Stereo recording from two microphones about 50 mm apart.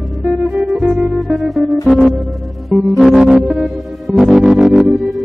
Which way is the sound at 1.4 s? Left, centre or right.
Centre.